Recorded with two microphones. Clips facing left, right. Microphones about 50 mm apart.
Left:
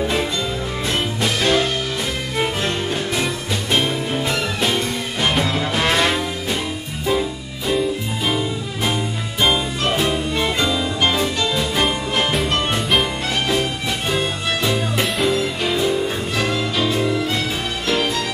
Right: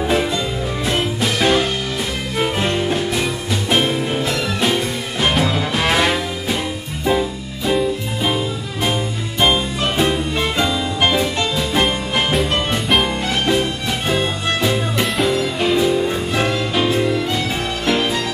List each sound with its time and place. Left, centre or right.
0.8 s music: centre
9.4 s music: centre
16.3 s music: centre